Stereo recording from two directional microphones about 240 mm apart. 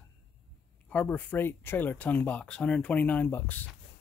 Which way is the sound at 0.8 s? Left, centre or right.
Centre.